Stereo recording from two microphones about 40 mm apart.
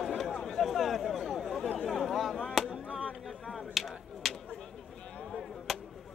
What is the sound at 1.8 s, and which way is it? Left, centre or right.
Chatter, centre.